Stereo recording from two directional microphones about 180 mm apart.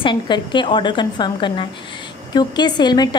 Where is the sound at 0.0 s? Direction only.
25° left (ahead or behind).